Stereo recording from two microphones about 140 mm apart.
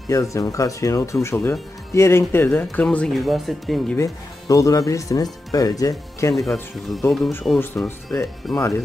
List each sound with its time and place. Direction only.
0.1 s speech: 25° left (ahead or behind); by 3.8 s centre (ahead or behind)
3.9 s speech: 20° left (ahead or behind)
6.3 s speech: centre (ahead or behind)
7.5 s speech: 20° left (ahead or behind)